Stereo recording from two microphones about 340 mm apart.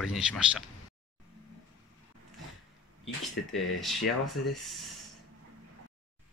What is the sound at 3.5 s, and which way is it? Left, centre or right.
Speech, centre.